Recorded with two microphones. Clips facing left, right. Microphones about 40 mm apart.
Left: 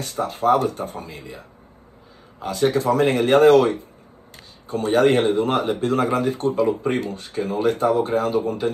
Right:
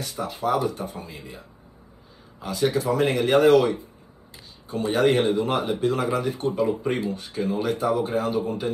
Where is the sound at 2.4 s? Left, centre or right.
Left.